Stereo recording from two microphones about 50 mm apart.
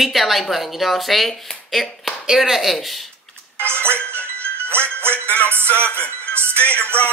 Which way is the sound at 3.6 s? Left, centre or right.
Right.